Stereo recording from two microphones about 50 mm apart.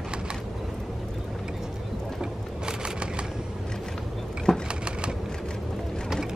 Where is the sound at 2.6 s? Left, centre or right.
Centre.